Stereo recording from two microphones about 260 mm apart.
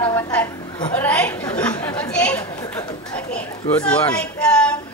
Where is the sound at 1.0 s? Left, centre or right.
Centre.